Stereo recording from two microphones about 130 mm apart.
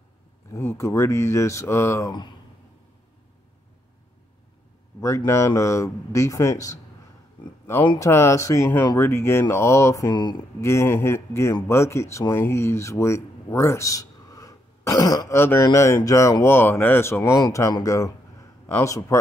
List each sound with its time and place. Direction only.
0.5 s speech: 20° left (ahead or behind)
5.0 s speech: 20° left (ahead or behind)
8.0 s a man's voice: 20° left (ahead or behind)